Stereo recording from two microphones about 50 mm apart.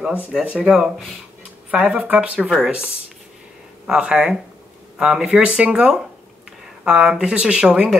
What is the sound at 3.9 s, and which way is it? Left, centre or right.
Speech, centre.